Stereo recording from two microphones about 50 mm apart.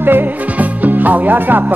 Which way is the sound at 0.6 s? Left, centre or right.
Right.